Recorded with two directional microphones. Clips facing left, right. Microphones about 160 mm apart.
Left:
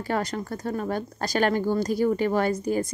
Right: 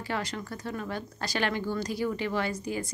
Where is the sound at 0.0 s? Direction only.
45° left (ahead or behind).